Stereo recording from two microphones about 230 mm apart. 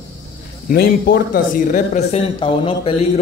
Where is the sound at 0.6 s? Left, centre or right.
Left.